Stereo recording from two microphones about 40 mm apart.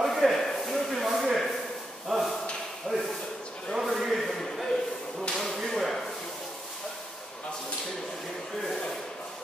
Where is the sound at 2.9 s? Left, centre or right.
Centre.